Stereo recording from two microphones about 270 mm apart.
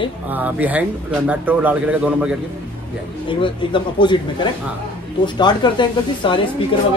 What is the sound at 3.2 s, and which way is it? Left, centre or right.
Speech, centre.